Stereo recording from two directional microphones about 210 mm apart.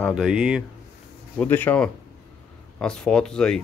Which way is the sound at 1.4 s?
10° left (ahead or behind).